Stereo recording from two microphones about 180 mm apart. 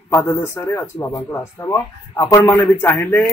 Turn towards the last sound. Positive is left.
turn(degrees=10)  # may be behind; listen again after turning